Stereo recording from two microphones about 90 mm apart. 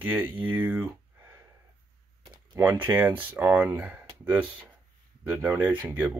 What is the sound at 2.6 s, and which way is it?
Speech, 25° right (ahead or behind).